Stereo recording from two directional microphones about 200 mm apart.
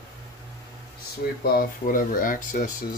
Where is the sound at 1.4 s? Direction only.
45° left (ahead or behind).